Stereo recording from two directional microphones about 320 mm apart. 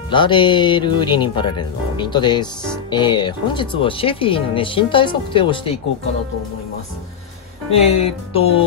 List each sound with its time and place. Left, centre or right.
0.1 s speech: centre
7.7 s speech: centre